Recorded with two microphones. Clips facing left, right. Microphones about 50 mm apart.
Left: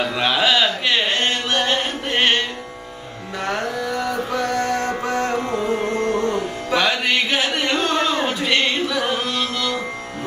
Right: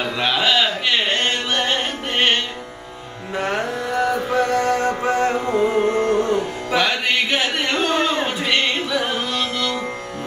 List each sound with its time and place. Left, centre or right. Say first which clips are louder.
0.0 s a sound: left 1 dB; centre
3.4 s music: left 1 dB; centre
5.5 s carnatic music: right 4 dB; centre
6.3 s music: right 1 dB; centre